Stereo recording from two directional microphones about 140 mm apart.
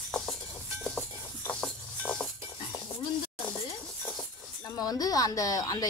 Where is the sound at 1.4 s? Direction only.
5° left (ahead or behind).